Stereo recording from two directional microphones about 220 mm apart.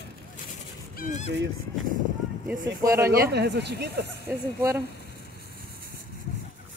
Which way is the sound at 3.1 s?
45° right (ahead or behind).